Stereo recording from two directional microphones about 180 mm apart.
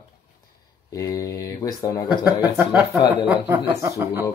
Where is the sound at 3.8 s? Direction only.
15° right (ahead or behind).